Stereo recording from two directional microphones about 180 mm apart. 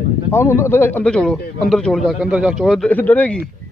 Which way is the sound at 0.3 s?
15° left (ahead or behind).